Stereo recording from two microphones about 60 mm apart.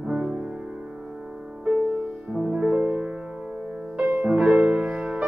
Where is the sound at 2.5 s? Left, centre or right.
Centre.